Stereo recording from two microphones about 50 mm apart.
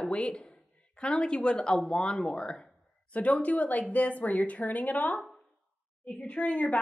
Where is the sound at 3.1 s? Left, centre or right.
Left.